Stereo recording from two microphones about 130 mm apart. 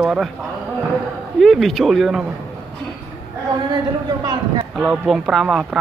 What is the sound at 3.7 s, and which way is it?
Speech, 35° right (ahead or behind).